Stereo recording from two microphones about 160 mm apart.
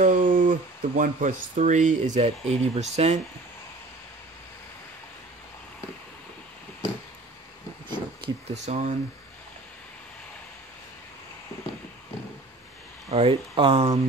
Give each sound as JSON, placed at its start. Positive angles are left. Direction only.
{"t": 0.0, "sound": "speech", "side_deg": -60}
{"t": 7.9, "sound": "a sound", "side_deg": -30}
{"t": 8.5, "sound": "speech", "side_deg": -45}
{"t": 13.1, "sound": "speech", "side_deg": -35}